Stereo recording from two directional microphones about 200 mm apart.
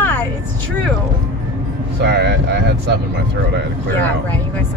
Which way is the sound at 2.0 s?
55° right (ahead or behind).